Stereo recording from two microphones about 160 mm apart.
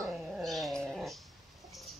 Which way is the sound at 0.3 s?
Centre (ahead or behind).